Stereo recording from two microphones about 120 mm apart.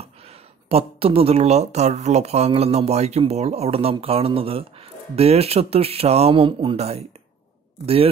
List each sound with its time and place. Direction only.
0.0 s speech: 55° right (ahead or behind)